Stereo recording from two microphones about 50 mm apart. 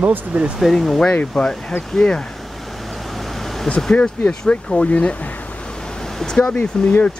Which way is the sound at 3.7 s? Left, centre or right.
Centre.